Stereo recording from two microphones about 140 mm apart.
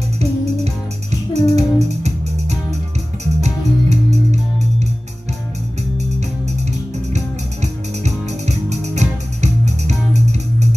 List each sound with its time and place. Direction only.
1.3 s music: 50° right (ahead or behind)
7.6 s music: 55° right (ahead or behind)